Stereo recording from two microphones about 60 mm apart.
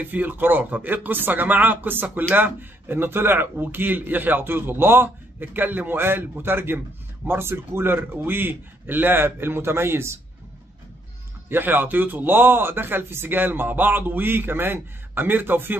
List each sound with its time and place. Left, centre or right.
0.0 s speech: right
11.4 s speech: right